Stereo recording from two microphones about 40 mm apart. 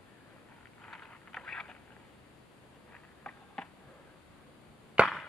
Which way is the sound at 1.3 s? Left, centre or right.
Centre.